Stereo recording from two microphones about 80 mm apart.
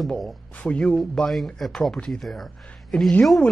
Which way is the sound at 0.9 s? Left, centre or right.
Centre.